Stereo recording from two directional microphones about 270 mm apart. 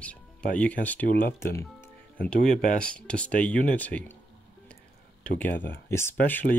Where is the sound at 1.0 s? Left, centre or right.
Left.